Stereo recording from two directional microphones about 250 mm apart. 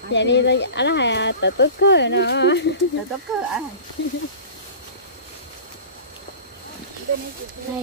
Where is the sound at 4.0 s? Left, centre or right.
Left.